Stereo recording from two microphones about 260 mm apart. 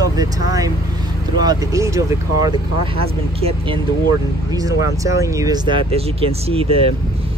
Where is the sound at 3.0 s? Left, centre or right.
Right.